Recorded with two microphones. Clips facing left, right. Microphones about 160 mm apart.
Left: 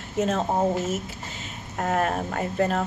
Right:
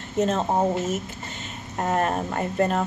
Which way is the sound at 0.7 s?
5° left (ahead or behind).